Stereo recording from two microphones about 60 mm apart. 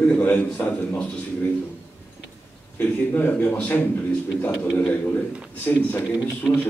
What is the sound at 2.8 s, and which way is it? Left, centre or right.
A man's voice, left.